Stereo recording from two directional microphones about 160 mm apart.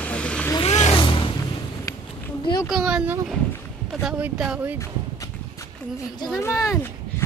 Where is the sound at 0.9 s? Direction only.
30° left (ahead or behind).